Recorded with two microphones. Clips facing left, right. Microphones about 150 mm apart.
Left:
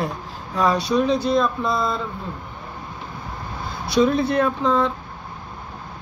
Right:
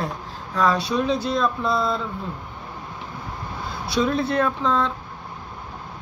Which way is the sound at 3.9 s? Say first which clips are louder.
Left 3 dB; 5° right (ahead or behind).